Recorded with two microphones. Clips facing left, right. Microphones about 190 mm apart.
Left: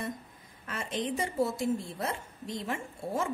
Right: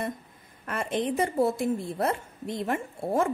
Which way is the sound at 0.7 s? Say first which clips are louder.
Right 5 dB; 55° right (ahead or behind).